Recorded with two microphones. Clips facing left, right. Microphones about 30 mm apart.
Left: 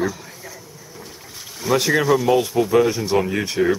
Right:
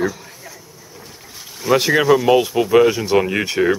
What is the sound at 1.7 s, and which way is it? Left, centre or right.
Speech, right.